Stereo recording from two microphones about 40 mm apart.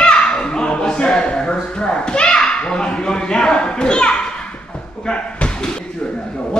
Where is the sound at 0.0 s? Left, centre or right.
Left.